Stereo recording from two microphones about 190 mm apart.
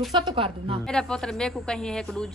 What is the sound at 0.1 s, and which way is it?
Speech, 25° right (ahead or behind).